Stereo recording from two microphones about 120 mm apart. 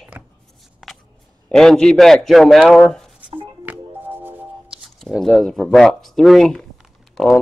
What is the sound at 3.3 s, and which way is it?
Music, 15° right (ahead or behind).